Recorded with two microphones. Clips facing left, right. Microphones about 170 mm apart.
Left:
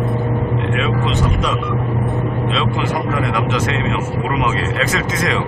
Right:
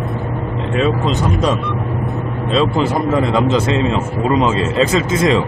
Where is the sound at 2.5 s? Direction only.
35° right (ahead or behind).